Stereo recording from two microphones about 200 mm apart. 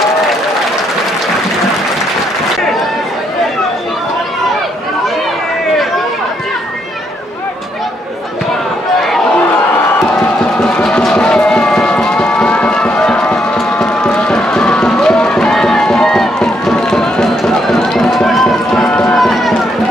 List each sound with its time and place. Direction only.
10.1 s crowd: 5° left (ahead or behind)
19.1 s run: centre (ahead or behind)